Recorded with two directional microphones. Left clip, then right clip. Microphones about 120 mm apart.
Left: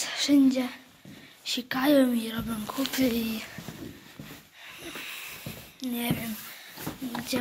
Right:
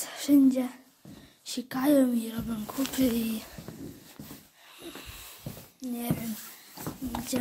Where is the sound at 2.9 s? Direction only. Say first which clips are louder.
Left 1 dB; 40° right (ahead or behind).